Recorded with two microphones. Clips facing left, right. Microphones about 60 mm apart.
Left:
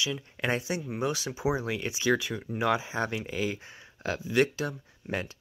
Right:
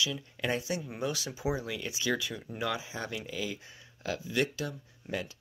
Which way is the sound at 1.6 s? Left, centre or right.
Left.